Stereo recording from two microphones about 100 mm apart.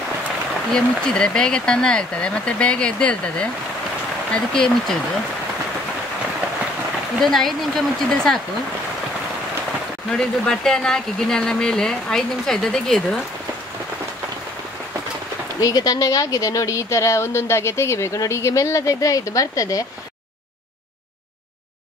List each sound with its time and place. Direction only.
0.7 s speech: 10° left (ahead or behind)
7.2 s speech: 5° left (ahead or behind)
10.1 s speech: 5° left (ahead or behind)
15.6 s speech: 40° left (ahead or behind)